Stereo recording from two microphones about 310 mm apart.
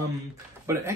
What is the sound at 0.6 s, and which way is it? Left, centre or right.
Speech, centre.